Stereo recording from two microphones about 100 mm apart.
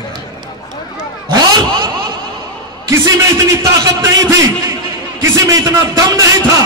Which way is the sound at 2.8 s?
35° right (ahead or behind).